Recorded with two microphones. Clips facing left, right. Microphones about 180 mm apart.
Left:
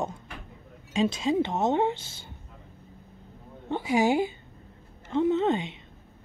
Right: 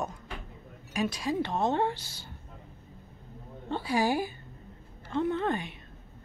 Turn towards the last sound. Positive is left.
turn(degrees=20)  # may be behind; listen again after turning